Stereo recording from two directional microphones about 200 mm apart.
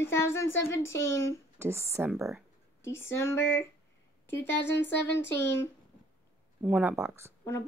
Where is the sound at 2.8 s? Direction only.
15° left (ahead or behind).